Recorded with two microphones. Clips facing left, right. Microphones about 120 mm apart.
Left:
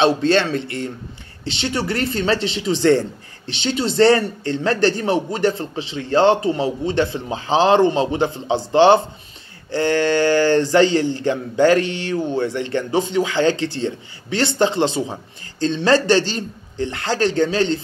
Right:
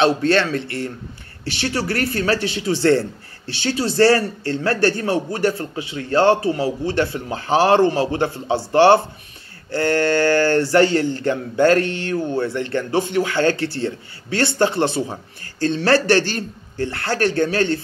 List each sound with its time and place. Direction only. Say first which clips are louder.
0.2 s speech: left 1 dB; 20° left (ahead or behind)